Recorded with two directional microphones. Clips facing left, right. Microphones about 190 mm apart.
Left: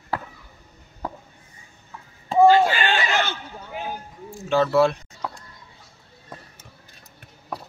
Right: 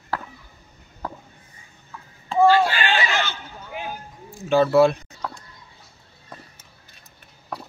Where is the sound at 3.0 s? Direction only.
55° left (ahead or behind).